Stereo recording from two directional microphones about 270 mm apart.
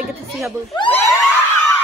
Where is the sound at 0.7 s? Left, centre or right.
Centre.